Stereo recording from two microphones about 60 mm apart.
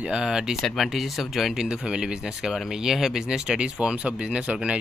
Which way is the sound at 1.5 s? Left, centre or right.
Centre.